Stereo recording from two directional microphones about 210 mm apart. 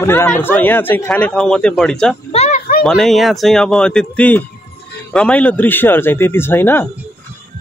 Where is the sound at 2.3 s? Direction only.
35° left (ahead or behind).